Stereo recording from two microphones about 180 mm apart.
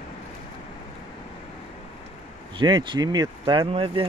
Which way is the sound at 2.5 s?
25° right (ahead or behind).